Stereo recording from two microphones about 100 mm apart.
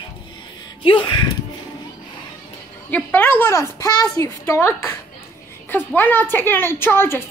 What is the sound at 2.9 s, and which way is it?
A woman's voice, 15° left (ahead or behind).